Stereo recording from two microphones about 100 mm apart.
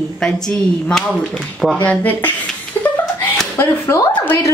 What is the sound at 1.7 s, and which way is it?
Speech, 15° left (ahead or behind).